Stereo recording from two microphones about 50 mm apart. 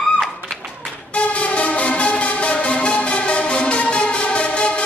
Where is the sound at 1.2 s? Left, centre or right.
Left.